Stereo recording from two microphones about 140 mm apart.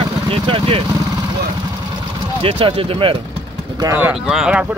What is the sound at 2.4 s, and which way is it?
Speech, 40° right (ahead or behind).